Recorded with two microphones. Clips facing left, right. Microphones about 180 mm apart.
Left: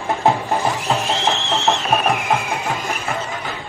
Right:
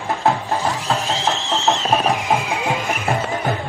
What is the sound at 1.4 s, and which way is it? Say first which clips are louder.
Music: left 1 dB; 60° left (ahead or behind).